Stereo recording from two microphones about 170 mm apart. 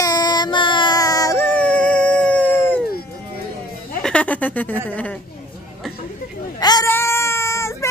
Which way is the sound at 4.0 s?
5° left (ahead or behind).